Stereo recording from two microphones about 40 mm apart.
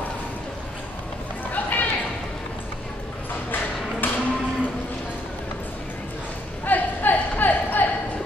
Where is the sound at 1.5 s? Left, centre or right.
Left.